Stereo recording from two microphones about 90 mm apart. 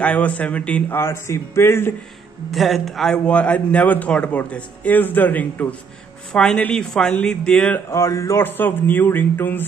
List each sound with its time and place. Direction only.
0.0 s a man's voice: 15° left (ahead or behind)
0.9 s speech: 30° left (ahead or behind)
2.5 s a man's voice: centre (ahead or behind)
3.3 s a man's voice: 15° left (ahead or behind)
7.9 s speech: 35° left (ahead or behind)